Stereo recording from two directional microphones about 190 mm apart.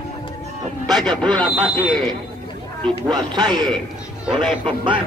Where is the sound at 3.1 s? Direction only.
20° right (ahead or behind).